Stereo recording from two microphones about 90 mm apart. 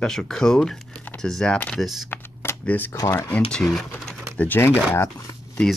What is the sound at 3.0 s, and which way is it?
Speech, 30° left (ahead or behind).